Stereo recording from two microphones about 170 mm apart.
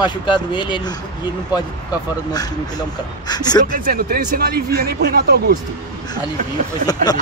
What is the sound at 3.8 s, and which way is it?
Speech, 60° right (ahead or behind).